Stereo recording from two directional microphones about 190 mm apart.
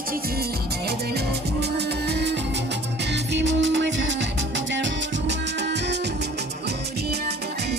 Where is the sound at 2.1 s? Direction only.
60° right (ahead or behind).